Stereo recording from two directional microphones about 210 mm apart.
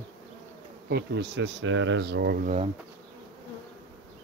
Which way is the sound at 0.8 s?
50° right (ahead or behind).